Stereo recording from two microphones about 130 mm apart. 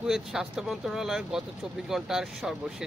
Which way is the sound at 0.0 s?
5° right (ahead or behind).